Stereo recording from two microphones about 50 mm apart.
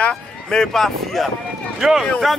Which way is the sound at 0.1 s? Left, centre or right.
Centre.